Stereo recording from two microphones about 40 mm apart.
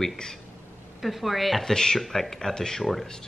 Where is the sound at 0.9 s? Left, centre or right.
Centre.